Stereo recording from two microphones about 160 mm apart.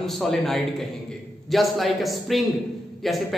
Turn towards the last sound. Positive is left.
turn(degrees=0)  # may be behind; listen again after turning